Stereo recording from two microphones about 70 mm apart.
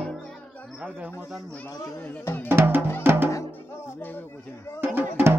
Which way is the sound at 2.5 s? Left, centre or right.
Right.